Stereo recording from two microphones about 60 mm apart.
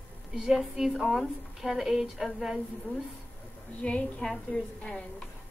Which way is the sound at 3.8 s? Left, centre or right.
Centre.